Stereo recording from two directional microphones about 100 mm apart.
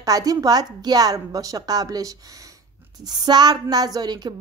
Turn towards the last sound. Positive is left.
turn(degrees=-45)  # may be behind; listen again after turning